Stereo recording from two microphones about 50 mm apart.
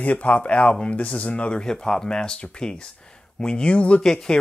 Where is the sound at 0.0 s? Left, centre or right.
Left.